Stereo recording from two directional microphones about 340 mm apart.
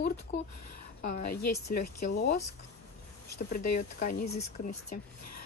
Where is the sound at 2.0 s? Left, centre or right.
Left.